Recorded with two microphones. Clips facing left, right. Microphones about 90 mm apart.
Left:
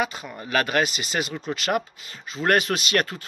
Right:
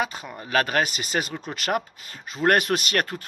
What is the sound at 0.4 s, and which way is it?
A man's voice, 35° right (ahead or behind).